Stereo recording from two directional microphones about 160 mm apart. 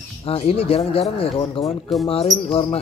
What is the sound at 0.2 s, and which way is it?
Speech, 35° left (ahead or behind).